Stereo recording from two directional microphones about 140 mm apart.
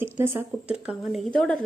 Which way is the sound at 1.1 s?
5° left (ahead or behind).